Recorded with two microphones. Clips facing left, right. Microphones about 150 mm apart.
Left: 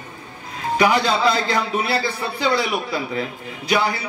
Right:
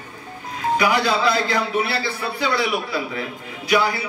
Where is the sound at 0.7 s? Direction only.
20° left (ahead or behind).